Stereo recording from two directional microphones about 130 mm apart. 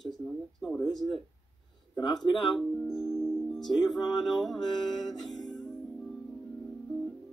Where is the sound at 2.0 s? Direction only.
Centre (ahead or behind).